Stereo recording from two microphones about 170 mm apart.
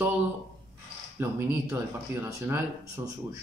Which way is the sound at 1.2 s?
15° right (ahead or behind).